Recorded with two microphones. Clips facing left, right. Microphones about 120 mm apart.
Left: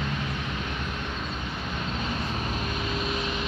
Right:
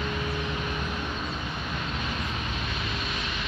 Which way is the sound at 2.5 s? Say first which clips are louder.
Left 3 dB; 40° left (ahead or behind).